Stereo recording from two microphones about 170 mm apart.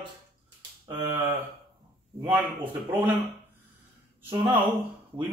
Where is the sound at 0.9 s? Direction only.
15° right (ahead or behind).